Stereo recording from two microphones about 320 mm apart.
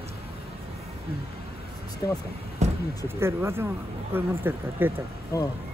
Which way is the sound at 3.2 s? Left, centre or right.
Centre.